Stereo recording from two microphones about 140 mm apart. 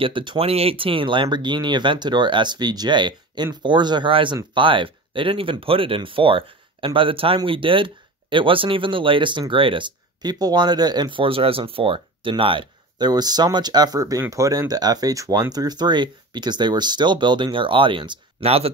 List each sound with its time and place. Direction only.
0.0 s speech: 35° right (ahead or behind)